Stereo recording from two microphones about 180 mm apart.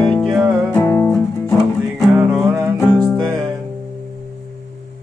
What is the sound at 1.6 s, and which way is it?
Music, centre (ahead or behind).